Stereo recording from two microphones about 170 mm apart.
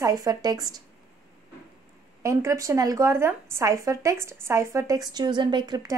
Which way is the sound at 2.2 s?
20° right (ahead or behind).